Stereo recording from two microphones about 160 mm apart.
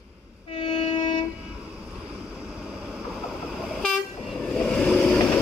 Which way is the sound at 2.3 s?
5° right (ahead or behind).